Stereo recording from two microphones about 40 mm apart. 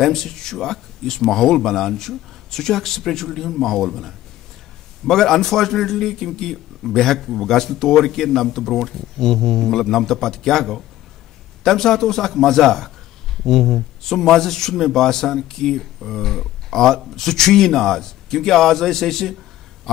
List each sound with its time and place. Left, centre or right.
0.0 s speech: centre